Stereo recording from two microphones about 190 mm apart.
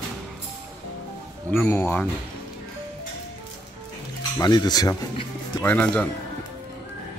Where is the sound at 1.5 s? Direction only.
10° left (ahead or behind).